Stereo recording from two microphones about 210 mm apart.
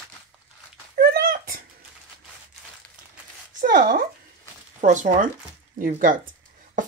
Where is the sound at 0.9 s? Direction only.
45° right (ahead or behind).